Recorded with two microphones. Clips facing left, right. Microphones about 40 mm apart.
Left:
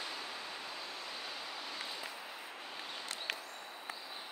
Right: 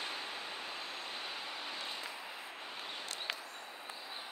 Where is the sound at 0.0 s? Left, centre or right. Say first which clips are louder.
Right 1 dB; right.